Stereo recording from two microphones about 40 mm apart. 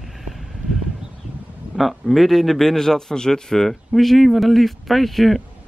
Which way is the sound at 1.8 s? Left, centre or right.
Centre.